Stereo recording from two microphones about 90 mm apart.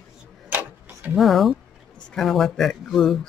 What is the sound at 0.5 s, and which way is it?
Tick-tock, 20° right (ahead or behind).